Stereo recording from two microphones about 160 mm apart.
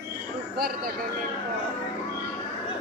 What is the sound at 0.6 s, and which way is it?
Speech, 70° right (ahead or behind).